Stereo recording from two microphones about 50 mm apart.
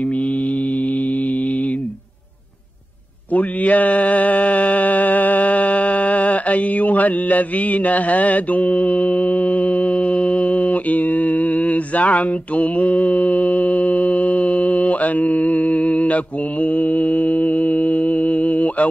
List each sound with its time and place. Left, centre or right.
3.3 s mantra: left